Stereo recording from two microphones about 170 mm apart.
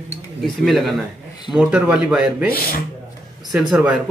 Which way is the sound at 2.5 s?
60° left (ahead or behind).